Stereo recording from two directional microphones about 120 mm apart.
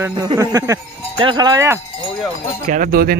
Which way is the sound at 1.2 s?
35° right (ahead or behind).